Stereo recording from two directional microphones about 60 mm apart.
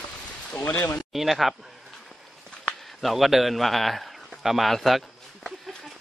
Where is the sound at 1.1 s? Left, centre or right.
Centre.